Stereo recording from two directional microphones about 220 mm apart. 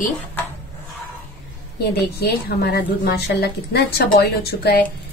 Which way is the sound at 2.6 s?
45° left (ahead or behind).